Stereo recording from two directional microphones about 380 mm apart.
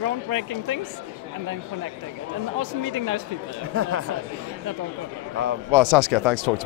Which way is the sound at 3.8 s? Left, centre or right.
Right.